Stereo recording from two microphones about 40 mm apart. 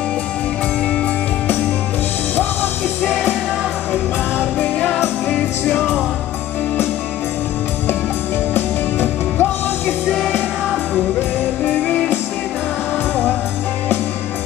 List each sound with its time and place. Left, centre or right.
8.5 s music: left